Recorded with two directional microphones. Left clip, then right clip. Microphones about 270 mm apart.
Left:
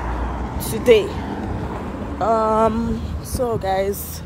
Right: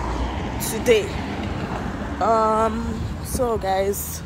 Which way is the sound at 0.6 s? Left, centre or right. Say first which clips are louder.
Left 4 dB; centre.